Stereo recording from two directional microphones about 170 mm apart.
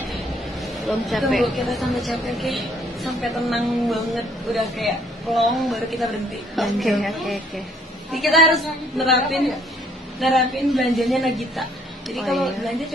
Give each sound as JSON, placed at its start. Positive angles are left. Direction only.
{"t": 0.6, "sound": "a woman's voice", "side_deg": 0}